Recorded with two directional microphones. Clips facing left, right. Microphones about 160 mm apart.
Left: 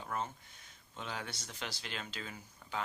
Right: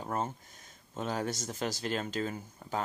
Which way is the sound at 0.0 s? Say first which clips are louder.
Right 5 dB; 40° right (ahead or behind).